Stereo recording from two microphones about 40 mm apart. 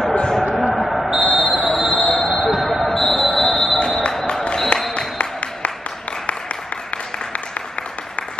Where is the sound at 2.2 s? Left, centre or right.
Left.